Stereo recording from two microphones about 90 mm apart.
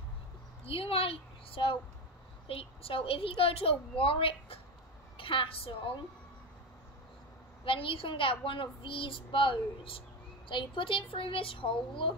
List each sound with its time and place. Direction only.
0.7 s a woman's voice: 90° left
2.4 s a woman's voice: 90° left
5.1 s a woman's voice: 75° left (ahead or behind)
7.6 s a child's voice: 85° left
10.5 s a child's voice: 65° left (ahead or behind)